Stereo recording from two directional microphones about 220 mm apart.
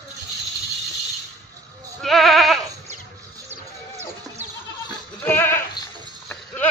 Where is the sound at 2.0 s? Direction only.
Centre (ahead or behind).